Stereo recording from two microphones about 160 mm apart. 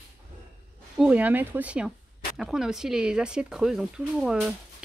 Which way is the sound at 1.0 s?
10° right (ahead or behind).